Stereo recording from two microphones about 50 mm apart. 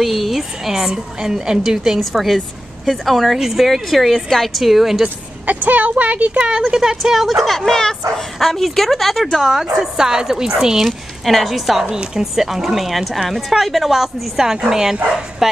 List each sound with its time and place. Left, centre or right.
0.0 s a woman's voice: centre
5.0 s speech: right
6.3 s a woman's voice: centre
11.2 s a woman's voice: centre